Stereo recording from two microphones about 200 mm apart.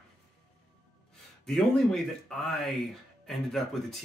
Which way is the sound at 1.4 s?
Centre (ahead or behind).